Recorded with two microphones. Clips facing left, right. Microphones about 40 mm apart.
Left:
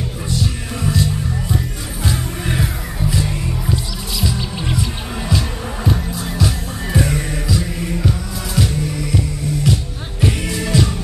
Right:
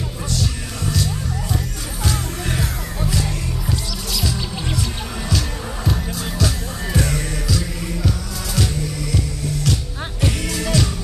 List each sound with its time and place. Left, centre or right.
0.3 s music: centre
5.9 s music: centre